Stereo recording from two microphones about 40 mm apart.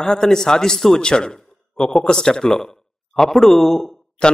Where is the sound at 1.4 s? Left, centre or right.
Centre.